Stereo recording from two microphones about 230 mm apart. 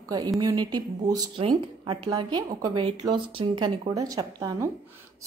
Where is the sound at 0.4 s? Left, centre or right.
Centre.